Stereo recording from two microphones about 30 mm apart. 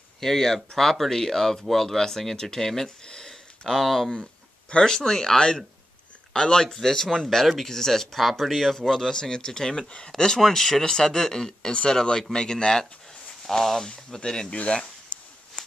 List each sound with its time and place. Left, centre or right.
0.2 s speech: centre
3.1 s a sound: left
3.6 s speech: centre
4.1 s a sound: left
4.8 s speech: centre
8.2 s speech: centre
9.1 s speech: left
14.5 s speech: left